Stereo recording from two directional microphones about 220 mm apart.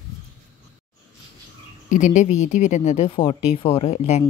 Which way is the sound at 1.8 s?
35° left (ahead or behind).